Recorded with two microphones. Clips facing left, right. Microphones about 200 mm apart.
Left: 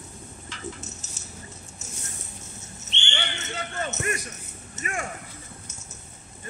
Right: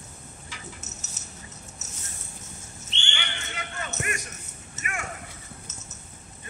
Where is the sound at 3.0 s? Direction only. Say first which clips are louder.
Left 4 dB; 35° left (ahead or behind).